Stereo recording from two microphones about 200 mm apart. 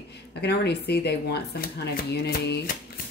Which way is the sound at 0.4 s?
55° left (ahead or behind).